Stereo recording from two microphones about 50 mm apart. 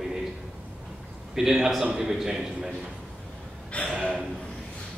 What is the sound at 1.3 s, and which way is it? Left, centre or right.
A man's voice, centre.